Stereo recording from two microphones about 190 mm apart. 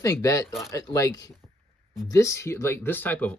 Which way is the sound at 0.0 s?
20° left (ahead or behind).